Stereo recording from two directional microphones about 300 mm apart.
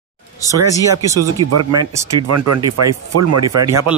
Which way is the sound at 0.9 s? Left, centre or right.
Right.